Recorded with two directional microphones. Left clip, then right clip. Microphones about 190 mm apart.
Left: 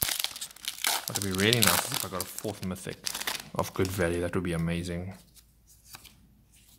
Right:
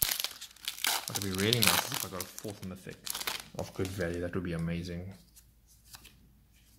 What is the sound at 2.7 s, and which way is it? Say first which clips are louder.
Speech: left 6 dB; 35° left (ahead or behind).